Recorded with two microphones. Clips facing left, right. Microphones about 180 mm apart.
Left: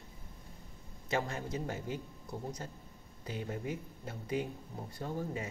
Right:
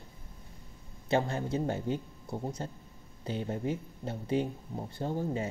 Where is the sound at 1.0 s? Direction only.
30° right (ahead or behind).